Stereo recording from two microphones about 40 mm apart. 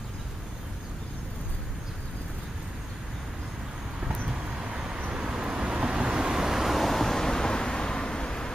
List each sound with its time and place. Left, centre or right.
4.3 s vehicle: right; by 8.5 s centre